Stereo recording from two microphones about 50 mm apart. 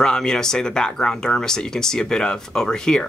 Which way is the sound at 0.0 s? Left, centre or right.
Centre.